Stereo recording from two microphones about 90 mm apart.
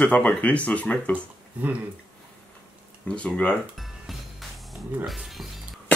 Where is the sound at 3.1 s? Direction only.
15° left (ahead or behind).